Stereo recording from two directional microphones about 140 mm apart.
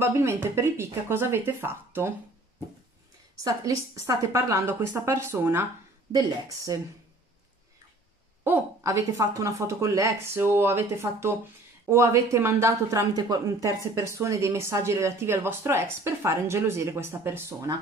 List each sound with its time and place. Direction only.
0.0 s speech: 20° right (ahead or behind)
3.4 s speech: 25° right (ahead or behind)
8.5 s speech: 20° right (ahead or behind)